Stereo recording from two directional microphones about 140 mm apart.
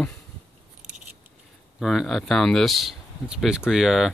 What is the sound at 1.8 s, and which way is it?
Speech, centre (ahead or behind).